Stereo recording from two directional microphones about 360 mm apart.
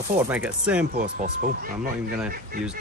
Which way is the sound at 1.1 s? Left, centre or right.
Right.